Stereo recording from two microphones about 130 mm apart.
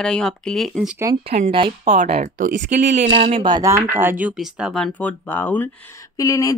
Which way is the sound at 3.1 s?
55° right (ahead or behind).